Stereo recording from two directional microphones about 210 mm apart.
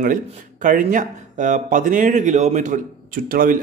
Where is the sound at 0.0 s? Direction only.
40° right (ahead or behind).